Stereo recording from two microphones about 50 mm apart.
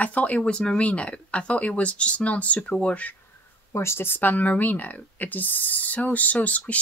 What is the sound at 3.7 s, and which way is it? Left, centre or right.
Speech, left.